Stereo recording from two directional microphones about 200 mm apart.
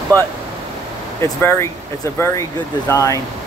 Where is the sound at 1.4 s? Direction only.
10° left (ahead or behind).